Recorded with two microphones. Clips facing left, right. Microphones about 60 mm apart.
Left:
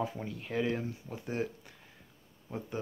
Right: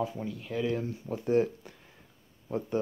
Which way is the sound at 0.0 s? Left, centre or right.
Centre.